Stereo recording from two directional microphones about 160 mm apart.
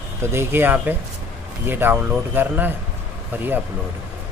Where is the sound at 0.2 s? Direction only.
15° right (ahead or behind).